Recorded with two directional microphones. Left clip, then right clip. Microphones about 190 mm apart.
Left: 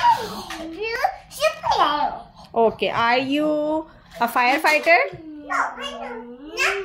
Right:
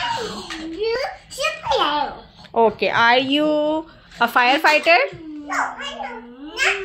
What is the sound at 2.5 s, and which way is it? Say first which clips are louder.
A woman's voice: right 3 dB; 15° left (ahead or behind).